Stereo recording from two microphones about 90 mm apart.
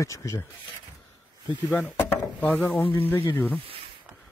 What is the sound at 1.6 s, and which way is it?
Speech, 20° left (ahead or behind).